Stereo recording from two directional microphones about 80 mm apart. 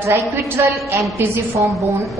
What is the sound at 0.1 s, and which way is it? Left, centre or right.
Speech, right.